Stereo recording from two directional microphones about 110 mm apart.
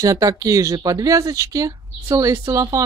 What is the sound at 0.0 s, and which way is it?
Speech, 30° right (ahead or behind).